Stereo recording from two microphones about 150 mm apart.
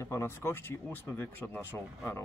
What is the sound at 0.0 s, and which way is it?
Speech, 20° left (ahead or behind).